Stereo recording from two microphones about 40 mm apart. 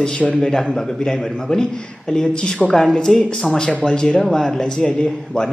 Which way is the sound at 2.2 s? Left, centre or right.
Left.